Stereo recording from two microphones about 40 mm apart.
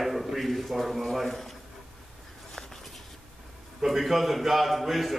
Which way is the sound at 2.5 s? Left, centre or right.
Centre.